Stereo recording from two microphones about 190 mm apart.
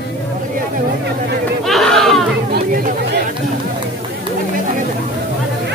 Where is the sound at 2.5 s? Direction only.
55° right (ahead or behind).